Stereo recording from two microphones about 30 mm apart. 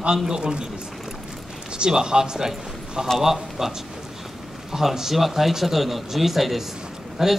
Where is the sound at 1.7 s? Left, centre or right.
Right; by 3.7 s centre.